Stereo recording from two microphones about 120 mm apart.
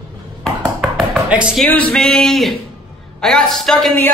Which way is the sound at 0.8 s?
5° right (ahead or behind).